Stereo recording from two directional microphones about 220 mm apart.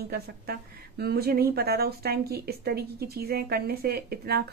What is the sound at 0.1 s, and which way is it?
Speech, 45° right (ahead or behind).